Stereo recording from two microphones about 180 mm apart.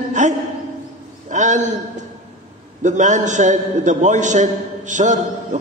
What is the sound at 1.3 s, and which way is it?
A man's voice, 40° right (ahead or behind).